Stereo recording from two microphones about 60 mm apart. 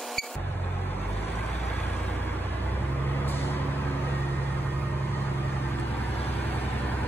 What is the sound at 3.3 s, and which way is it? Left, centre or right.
Vehicle, left.